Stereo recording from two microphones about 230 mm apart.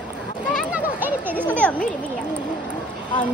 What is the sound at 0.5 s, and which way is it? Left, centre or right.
Children playing, centre.